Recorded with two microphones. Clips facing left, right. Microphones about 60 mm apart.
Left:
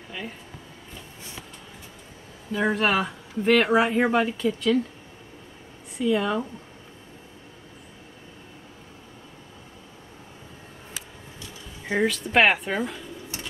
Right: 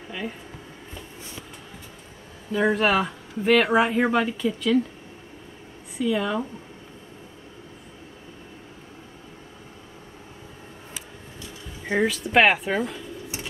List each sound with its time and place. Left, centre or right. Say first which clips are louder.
2.5 s speech: right 2 dB; centre
5.9 s speech: left 1 dB; centre
11.8 s speech: right 1 dB; centre